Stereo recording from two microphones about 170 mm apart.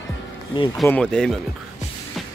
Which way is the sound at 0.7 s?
5° left (ahead or behind).